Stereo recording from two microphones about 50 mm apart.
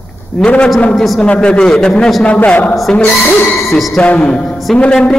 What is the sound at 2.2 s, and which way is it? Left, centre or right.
Speech, left.